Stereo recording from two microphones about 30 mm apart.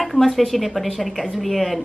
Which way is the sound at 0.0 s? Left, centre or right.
Centre.